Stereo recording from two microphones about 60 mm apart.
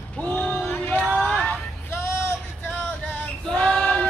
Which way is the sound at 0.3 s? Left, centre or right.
Left.